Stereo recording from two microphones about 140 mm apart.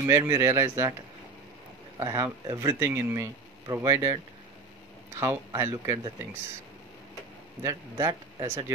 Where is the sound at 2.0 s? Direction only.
20° right (ahead or behind).